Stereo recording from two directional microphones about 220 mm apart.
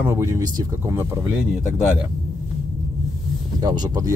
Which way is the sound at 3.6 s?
15° right (ahead or behind).